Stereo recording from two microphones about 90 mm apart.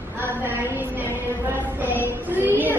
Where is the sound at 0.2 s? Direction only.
25° right (ahead or behind).